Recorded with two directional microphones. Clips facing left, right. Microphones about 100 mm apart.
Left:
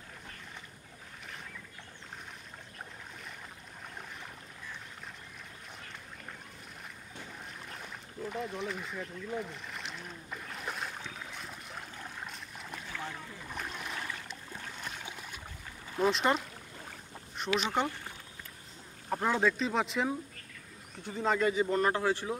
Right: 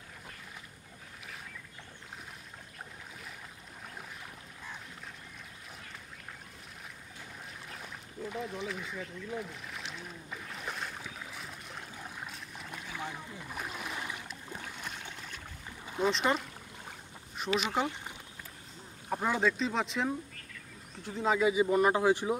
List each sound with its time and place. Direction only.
7.7 s boat: centre (ahead or behind)
12.9 s boat: 15° right (ahead or behind)
13.5 s a sound: 5° right (ahead or behind)
16.0 s speech: centre (ahead or behind)
17.6 s speech: 5° right (ahead or behind)
19.0 s speech: 5° right (ahead or behind)